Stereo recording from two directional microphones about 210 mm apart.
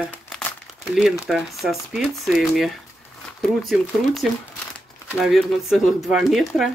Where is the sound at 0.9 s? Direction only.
5° right (ahead or behind).